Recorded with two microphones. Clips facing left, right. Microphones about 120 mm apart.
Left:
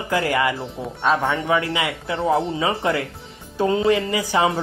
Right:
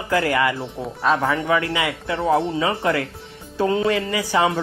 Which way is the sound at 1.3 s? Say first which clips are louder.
Even; 25° left (ahead or behind).